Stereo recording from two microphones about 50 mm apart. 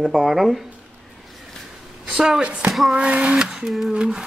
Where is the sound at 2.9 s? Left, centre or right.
Right.